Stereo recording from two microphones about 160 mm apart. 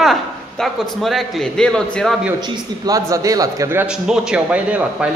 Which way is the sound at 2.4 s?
25° right (ahead or behind).